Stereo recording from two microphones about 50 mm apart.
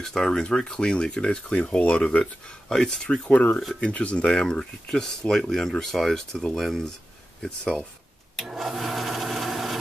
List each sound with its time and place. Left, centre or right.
0.0 s speech: centre; by 2.2 s left
2.7 s speech: centre
3.3 s speech: left
4.3 s speech: centre
8.5 s a sound: centre